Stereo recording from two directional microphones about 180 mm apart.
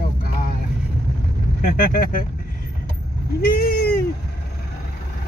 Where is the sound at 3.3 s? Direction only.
55° left (ahead or behind).